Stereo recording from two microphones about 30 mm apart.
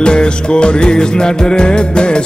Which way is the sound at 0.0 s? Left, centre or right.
Left.